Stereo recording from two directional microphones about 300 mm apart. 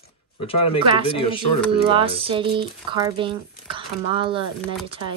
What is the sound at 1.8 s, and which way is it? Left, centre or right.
Speech, centre.